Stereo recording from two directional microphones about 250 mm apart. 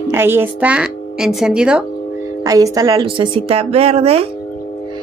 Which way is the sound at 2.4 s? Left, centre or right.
Centre.